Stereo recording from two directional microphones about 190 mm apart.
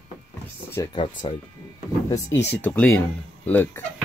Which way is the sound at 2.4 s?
10° left (ahead or behind).